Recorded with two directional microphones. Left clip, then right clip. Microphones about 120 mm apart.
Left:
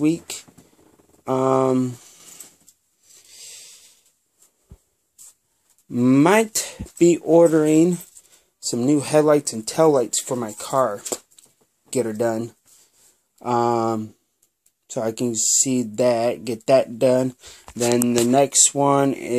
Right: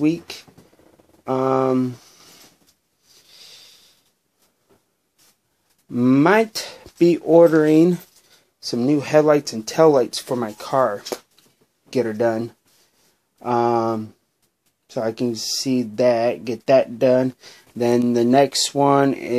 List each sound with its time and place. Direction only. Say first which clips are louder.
0.0 s speech: right 1 dB; 20° left (ahead or behind)
1.2 s mantra: even; 35° left (ahead or behind)
3.1 s rub: left 1 dB; 30° left (ahead or behind)
5.9 s speech: even; 30° left (ahead or behind); by 8.4 s centre (ahead or behind)
8.6 s speech: even; 20° left (ahead or behind)
13.4 s speech: right 1 dB; 20° left (ahead or behind)